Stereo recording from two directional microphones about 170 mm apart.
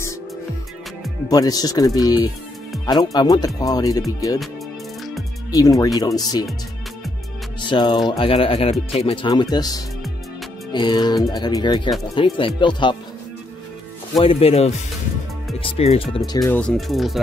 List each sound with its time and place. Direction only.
1.3 s music: 20° left (ahead or behind)
5.5 s music: 20° left (ahead or behind)
7.6 s music: 25° left (ahead or behind)
8.2 s speech: 35° left (ahead or behind)
9.0 s music: 30° left (ahead or behind)
14.1 s speech: 30° left (ahead or behind)
16.3 s music: 20° left (ahead or behind)
16.5 s speech: 5° left (ahead or behind)